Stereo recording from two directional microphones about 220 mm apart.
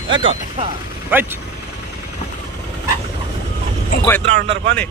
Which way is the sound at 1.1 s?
10° right (ahead or behind).